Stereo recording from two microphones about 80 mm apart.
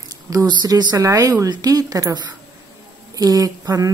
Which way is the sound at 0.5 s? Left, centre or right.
Right.